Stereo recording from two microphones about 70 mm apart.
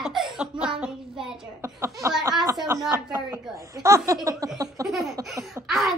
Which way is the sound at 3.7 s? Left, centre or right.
Right.